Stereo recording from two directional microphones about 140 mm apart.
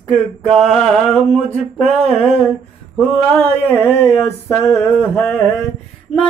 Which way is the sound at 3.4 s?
15° left (ahead or behind).